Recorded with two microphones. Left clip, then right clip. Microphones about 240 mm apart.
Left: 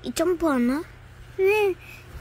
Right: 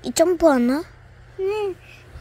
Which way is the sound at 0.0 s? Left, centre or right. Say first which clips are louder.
Right 7 dB; centre.